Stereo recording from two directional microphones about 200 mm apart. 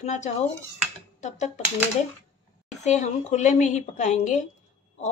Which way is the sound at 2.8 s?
35° left (ahead or behind).